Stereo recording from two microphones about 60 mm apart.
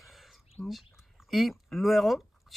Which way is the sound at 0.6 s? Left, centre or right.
Centre.